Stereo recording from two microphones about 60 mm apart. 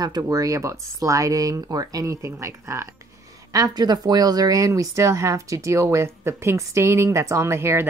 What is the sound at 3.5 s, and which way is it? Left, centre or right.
Speech, right.